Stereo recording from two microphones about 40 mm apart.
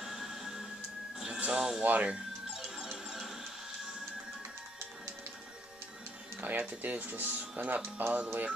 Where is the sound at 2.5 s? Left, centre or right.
Centre.